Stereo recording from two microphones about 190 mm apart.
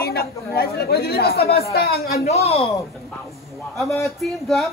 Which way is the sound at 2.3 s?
35° left (ahead or behind).